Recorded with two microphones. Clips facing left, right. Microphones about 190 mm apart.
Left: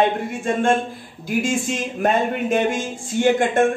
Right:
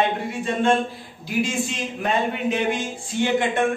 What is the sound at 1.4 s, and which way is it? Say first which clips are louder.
A man's voice: left 1 dB; 50° left (ahead or behind).